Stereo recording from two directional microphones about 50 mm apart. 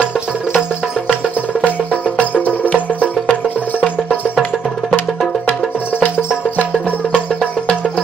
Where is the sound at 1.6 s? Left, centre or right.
Left.